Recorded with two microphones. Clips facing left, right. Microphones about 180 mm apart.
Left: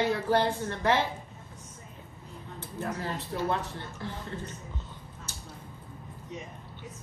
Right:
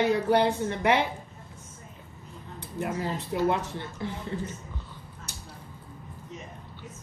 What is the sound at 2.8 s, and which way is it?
A woman's voice, 15° right (ahead or behind).